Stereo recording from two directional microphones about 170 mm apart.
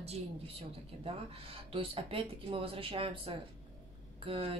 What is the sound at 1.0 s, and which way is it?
Speech, 35° right (ahead or behind).